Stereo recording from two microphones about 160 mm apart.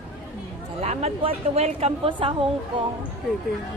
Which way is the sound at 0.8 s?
40° right (ahead or behind).